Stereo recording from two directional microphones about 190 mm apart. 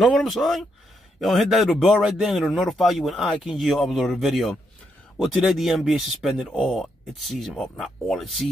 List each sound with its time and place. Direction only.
0.0 s speech: centre (ahead or behind)